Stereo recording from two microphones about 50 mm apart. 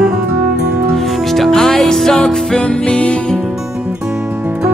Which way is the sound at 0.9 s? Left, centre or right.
Centre.